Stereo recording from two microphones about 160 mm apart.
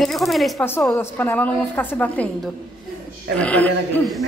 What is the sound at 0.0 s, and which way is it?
Speech, centre (ahead or behind).